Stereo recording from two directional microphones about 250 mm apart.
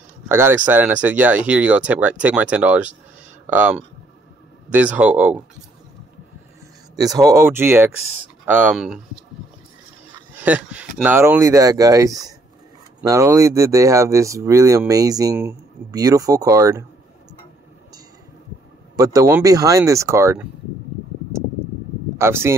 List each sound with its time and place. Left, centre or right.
0.3 s speech: centre
7.0 s speech: centre
10.3 s speech: centre
18.9 s speech: centre
22.2 s speech: centre